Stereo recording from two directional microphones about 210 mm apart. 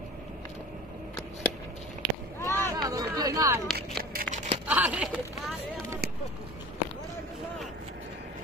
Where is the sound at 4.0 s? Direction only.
45° right (ahead or behind).